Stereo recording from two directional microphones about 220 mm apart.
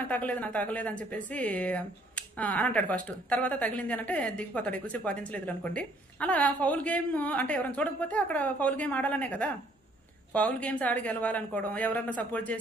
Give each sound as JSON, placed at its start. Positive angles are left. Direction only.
{"t": 0.0, "sound": "a woman's voice", "side_deg": 5}